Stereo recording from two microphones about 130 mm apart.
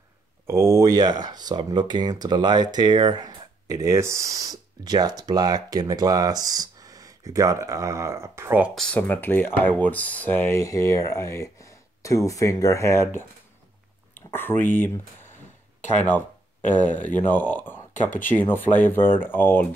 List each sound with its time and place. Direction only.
0.5 s speech: 25° right (ahead or behind)
8.7 s speech: 10° left (ahead or behind)
14.6 s speech: 15° left (ahead or behind)
16.6 s speech: 15° left (ahead or behind)